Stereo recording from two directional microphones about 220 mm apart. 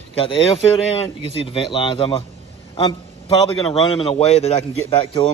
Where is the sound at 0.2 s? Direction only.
25° left (ahead or behind).